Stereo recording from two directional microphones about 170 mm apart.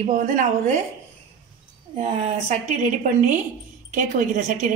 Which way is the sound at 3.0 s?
50° right (ahead or behind).